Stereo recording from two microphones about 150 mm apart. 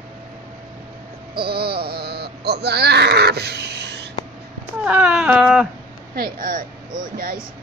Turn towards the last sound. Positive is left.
turn(degrees=-70)  # may be behind; listen again after turning